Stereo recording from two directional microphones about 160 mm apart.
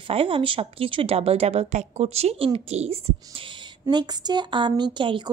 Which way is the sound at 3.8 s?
25° right (ahead or behind).